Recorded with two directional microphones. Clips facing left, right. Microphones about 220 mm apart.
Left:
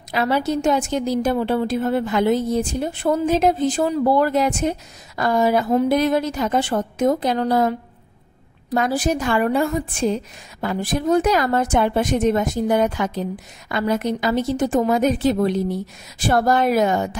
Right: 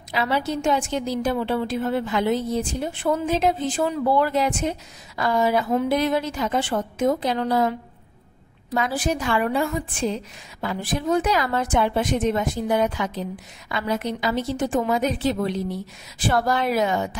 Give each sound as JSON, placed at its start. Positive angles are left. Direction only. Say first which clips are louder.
{"t": 0.1, "sound": "a woman's voice", "louder": "left 4 dB", "side_deg": 45}